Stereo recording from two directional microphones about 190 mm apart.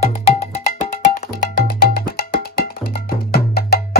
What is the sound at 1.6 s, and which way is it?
Music, 50° left (ahead or behind).